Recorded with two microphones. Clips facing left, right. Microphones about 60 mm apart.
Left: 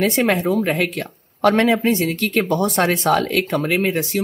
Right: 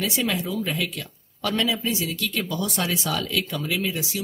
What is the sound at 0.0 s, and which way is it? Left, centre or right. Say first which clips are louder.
Speech: left 8 dB; left.